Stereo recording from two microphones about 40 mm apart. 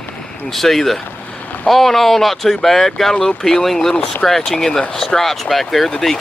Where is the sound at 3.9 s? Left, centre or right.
Left.